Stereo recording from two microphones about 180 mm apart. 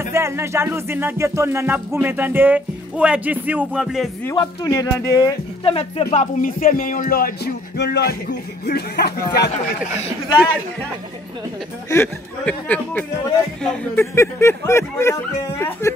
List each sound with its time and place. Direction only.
0.0 s music: 15° right (ahead or behind)
4.6 s speech: 15° left (ahead or behind); by 6.0 s 30° left (ahead or behind)
6.0 s speech: 45° left (ahead or behind); by 9.5 s 65° left (ahead or behind)
11.9 s speech: 10° left (ahead or behind)